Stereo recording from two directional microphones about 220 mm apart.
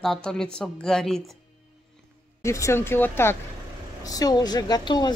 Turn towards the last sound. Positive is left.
turn(degrees=20)  # may be behind; listen again after turning